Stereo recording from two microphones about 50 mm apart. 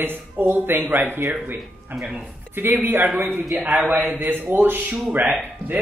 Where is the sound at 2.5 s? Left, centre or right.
Right.